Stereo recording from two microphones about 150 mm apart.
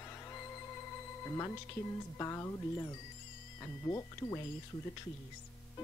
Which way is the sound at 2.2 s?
20° left (ahead or behind).